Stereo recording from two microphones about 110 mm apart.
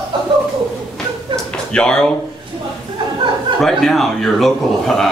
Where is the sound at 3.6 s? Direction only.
5° left (ahead or behind).